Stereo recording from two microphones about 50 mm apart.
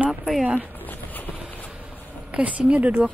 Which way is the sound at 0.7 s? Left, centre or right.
Left.